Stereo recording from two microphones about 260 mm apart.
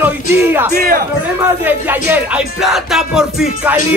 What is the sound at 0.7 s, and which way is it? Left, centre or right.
Speech, right.